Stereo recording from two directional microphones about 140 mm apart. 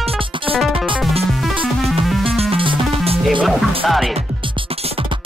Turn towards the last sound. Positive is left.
turn(degrees=0)  # may be behind; listen again after turning